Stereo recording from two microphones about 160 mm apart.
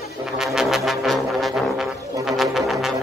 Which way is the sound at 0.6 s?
Centre (ahead or behind).